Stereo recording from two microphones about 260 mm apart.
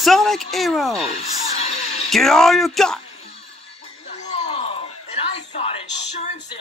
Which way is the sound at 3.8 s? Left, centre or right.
Left.